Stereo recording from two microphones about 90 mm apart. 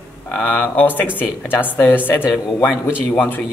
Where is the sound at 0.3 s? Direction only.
20° left (ahead or behind).